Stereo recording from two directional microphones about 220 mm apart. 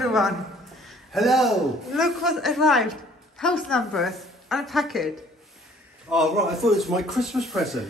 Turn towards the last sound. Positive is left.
turn(degrees=0)  # may be behind; listen again after turning